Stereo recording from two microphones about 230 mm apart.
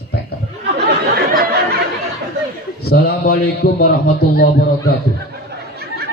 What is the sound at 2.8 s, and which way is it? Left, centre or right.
A man's voice, left.